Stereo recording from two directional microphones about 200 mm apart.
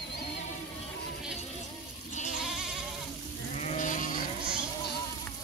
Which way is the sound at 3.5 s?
35° left (ahead or behind).